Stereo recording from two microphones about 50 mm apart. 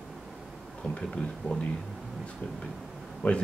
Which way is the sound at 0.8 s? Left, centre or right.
Centre.